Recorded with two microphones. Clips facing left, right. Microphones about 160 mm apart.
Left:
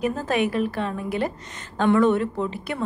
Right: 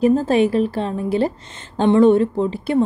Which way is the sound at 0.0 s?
30° right (ahead or behind).